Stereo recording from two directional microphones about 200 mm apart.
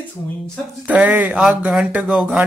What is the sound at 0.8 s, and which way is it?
Speech, 5° right (ahead or behind).